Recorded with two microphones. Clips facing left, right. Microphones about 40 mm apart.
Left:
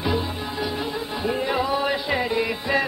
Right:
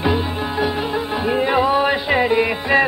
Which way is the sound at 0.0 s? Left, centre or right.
Right.